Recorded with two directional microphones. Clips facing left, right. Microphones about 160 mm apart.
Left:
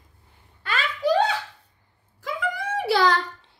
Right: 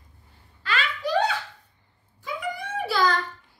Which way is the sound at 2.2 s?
90° left.